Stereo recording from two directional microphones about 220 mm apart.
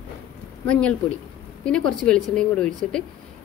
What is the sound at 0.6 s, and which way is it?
A woman's voice, 5° left (ahead or behind).